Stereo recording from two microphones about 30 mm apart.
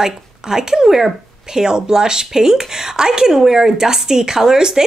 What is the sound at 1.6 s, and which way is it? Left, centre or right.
Speech, right.